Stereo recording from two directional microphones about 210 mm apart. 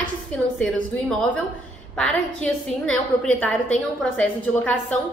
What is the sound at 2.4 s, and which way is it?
A woman's voice, 5° left (ahead or behind).